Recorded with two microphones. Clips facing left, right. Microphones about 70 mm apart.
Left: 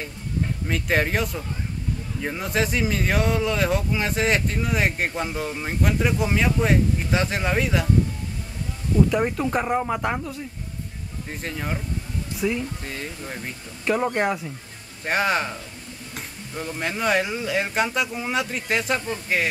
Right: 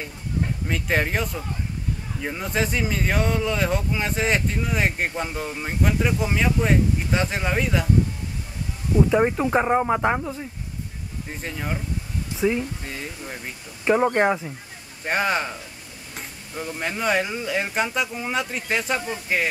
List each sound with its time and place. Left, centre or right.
0.7 s speech: centre
8.9 s speech: centre
11.2 s speech: centre
12.4 s speech: centre
12.8 s speech: centre
13.8 s speech: centre
15.0 s speech: centre